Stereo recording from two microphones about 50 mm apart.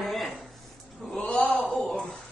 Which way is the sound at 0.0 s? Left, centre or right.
Centre.